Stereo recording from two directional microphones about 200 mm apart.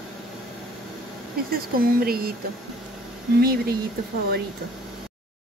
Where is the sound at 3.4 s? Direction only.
50° right (ahead or behind).